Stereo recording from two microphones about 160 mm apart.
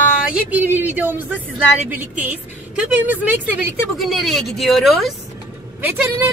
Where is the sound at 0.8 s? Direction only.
10° right (ahead or behind).